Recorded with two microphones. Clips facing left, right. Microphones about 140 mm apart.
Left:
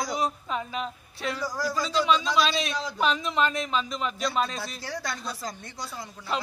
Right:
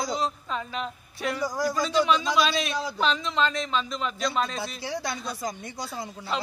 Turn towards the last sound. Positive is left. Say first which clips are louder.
# right 3 dB
turn(degrees=-20)  # may be behind; listen again after turning